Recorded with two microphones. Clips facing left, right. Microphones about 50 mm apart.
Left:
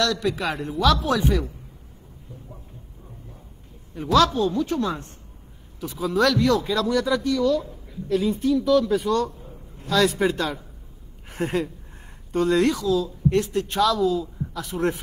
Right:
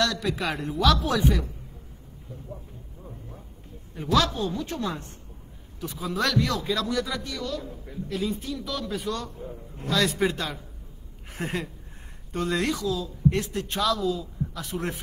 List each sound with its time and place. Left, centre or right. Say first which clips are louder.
0.1 s speech: left 3 dB; centre
3.9 s a man's voice: left 5 dB; centre